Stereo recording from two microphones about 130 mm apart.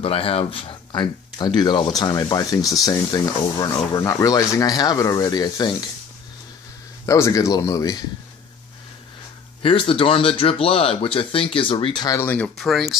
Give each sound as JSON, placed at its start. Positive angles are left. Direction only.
{"t": 0.0, "sound": "speech", "side_deg": 45}
{"t": 7.1, "sound": "speech", "side_deg": 25}
{"t": 9.6, "sound": "speech", "side_deg": 45}
{"t": 12.2, "sound": "speech", "side_deg": 15}
{"t": 12.5, "sound": "speech", "side_deg": 0}